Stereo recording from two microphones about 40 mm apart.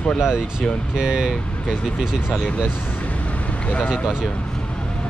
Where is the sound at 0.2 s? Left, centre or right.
Centre.